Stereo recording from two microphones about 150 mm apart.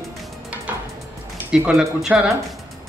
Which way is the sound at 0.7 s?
10° right (ahead or behind).